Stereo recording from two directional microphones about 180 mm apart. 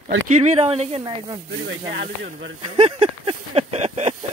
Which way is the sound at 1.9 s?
65° right (ahead or behind).